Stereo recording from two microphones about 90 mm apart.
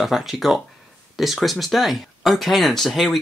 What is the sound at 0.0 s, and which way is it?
Speech, centre (ahead or behind).